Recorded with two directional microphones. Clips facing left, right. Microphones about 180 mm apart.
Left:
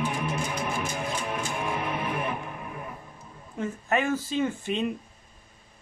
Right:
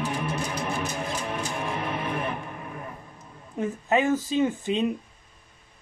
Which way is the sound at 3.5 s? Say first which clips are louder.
Right 3 dB; 15° right (ahead or behind).